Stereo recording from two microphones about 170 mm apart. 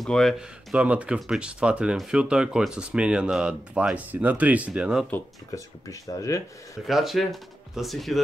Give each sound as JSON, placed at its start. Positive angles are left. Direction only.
{"t": 0.0, "sound": "speech", "side_deg": 0}
{"t": 5.1, "sound": "speech", "side_deg": 20}
{"t": 6.9, "sound": "speech", "side_deg": 0}